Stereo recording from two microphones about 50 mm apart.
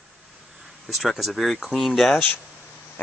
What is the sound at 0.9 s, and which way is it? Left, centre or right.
Speech, centre.